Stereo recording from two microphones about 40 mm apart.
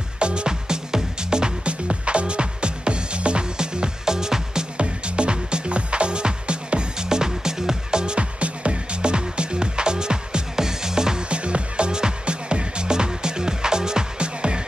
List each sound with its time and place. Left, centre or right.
0.2 s music: right
4.7 s music: right
11.2 s music: right